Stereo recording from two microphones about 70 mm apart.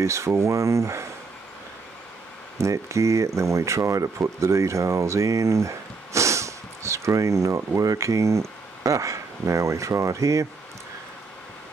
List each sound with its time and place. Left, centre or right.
0.0 s speech: right
2.6 s speech: right